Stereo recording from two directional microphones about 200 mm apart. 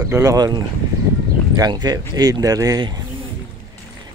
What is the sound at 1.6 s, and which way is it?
Speech, 20° right (ahead or behind).